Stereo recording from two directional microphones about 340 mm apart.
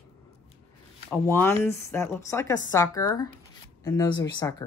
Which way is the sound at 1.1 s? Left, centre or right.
Centre.